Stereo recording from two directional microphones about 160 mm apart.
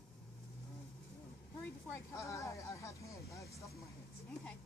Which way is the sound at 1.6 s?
15° left (ahead or behind).